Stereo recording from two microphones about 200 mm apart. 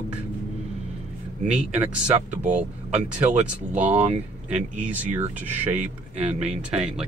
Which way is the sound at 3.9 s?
35° right (ahead or behind).